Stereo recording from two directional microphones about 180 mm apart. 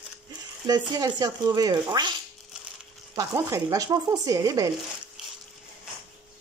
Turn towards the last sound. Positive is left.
turn(degrees=-20)  # may be behind; listen again after turning